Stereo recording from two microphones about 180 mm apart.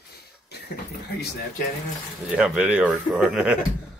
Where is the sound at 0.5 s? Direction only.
65° left (ahead or behind).